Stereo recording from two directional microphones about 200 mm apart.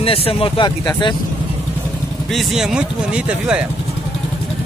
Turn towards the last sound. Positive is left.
turn(degrees=-5)  # may be behind; listen again after turning